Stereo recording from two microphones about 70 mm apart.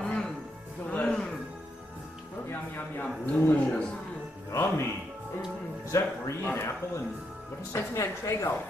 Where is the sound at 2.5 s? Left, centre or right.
Left.